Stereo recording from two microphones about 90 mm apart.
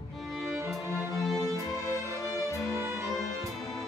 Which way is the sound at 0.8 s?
35° left (ahead or behind).